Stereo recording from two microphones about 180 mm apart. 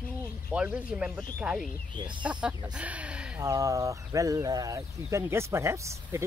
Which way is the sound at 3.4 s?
20° right (ahead or behind).